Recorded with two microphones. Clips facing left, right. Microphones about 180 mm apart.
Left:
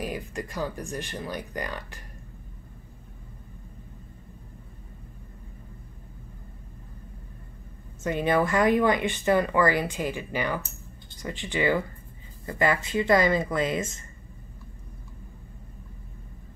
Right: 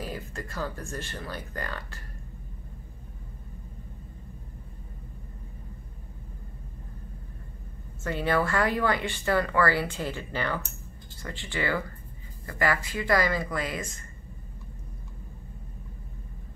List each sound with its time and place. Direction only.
0.0 s speech: 15° left (ahead or behind)
8.0 s speech: 20° left (ahead or behind)